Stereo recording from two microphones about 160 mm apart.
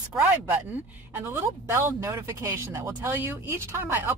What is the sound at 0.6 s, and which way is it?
Speech, 10° right (ahead or behind).